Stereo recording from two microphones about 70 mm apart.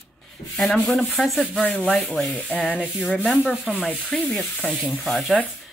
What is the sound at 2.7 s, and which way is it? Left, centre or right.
Sanding, centre.